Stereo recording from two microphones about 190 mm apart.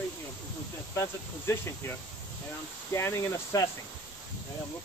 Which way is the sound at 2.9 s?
15° left (ahead or behind).